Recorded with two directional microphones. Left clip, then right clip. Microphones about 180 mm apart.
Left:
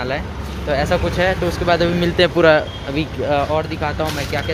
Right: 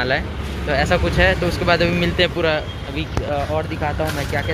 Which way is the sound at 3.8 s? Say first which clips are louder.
Left 1 dB; 10° left (ahead or behind).